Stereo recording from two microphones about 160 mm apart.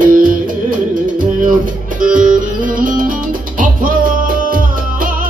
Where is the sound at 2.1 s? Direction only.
55° right (ahead or behind).